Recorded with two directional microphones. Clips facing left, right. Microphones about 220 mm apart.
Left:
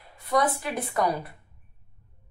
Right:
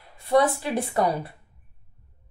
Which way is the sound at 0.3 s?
30° right (ahead or behind).